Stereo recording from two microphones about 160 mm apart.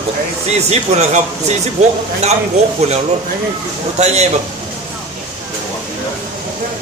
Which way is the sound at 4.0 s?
45° right (ahead or behind).